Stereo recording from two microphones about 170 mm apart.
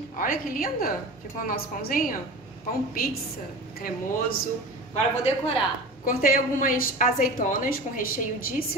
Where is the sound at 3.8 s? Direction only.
60° left (ahead or behind).